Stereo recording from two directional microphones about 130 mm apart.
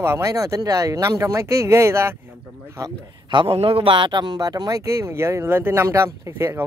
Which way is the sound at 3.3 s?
40° right (ahead or behind).